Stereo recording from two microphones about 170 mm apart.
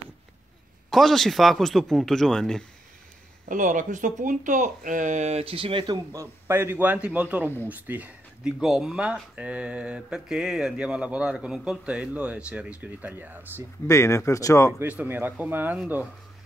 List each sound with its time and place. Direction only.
0.8 s speech: centre (ahead or behind)
3.4 s speech: 50° right (ahead or behind); by 5.9 s 30° right (ahead or behind)
6.1 s speech: 15° right (ahead or behind)
13.8 s speech: 15° left (ahead or behind)
14.8 s speech: 10° right (ahead or behind)